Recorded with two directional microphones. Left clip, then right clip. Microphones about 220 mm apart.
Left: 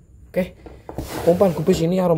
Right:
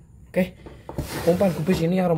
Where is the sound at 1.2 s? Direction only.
15° left (ahead or behind).